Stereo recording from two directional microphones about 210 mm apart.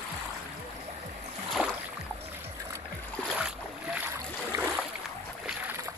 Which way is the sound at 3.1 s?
Centre (ahead or behind).